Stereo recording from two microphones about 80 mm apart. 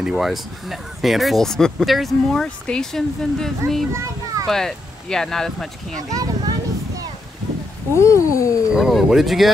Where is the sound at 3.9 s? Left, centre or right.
Right.